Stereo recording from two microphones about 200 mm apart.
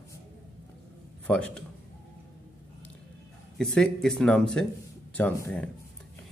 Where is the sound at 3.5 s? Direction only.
5° left (ahead or behind).